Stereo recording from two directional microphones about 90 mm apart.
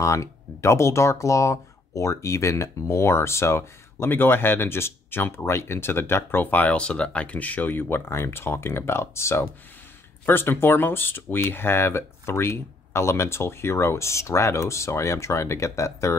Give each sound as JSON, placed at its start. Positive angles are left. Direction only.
{"t": 0.0, "sound": "speech", "side_deg": 35}